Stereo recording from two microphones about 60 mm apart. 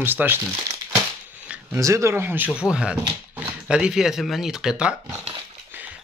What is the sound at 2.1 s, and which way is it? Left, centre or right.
Speech, right.